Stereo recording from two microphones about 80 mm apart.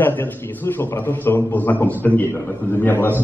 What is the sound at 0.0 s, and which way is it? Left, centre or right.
A man's voice, left.